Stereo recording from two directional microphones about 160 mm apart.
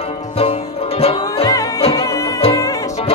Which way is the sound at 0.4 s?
40° left (ahead or behind).